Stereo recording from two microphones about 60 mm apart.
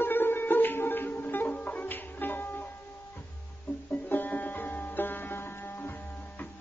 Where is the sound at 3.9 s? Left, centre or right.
Left.